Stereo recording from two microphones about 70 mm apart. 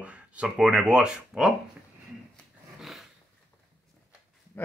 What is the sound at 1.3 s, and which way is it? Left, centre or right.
Speech, centre.